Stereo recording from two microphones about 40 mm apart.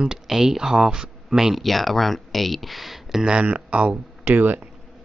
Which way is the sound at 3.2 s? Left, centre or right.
Right.